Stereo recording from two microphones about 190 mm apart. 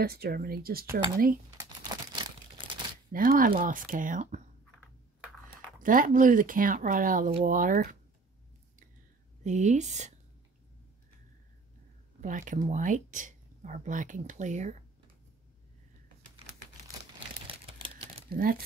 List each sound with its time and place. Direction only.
0.0 s speech: 55° right (ahead or behind)
3.1 s speech: 50° right (ahead or behind)
5.8 s speech: 45° right (ahead or behind)
9.4 s speech: 40° right (ahead or behind)
12.2 s speech: 40° right (ahead or behind)
17.5 s crumpling: 30° right (ahead or behind)
18.3 s speech: 50° right (ahead or behind)